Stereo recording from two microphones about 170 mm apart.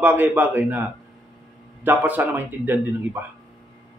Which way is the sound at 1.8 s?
10° right (ahead or behind).